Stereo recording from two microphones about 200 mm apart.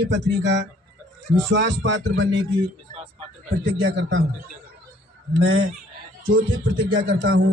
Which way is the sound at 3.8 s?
65° right (ahead or behind).